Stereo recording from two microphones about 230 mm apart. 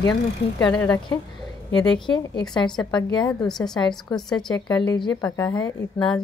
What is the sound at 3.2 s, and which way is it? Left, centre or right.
A woman's voice, centre.